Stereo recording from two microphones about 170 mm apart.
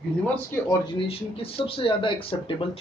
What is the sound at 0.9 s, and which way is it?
Speech, 35° left (ahead or behind).